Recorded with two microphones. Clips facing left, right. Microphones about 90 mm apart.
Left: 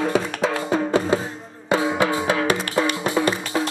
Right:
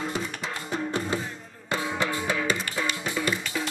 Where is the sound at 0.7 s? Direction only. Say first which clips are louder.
Left 7 dB; 90° left; by 3.6 s 55° left (ahead or behind).